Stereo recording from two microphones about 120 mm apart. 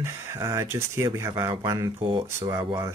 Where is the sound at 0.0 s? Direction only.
20° right (ahead or behind).